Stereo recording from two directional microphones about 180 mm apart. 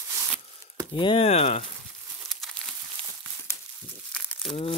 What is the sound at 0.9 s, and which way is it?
Speech, 30° left (ahead or behind).